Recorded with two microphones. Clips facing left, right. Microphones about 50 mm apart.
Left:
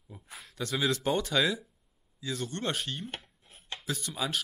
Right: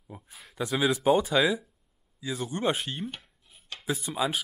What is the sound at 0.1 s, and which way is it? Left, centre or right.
Speech, centre.